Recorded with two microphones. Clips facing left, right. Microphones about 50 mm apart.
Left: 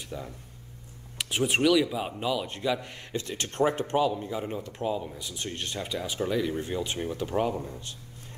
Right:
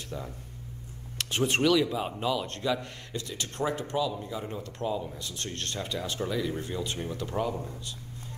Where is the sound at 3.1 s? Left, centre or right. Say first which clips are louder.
Left 4 dB; left.